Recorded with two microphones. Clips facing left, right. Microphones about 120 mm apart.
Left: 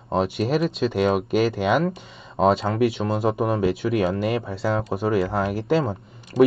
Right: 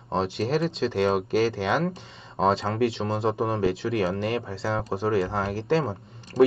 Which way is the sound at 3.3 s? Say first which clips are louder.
Left 3 dB; 15° left (ahead or behind).